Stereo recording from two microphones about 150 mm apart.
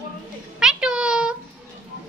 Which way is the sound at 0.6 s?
5° right (ahead or behind).